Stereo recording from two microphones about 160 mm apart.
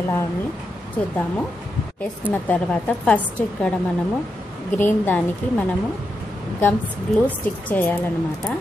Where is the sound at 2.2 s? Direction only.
10° left (ahead or behind).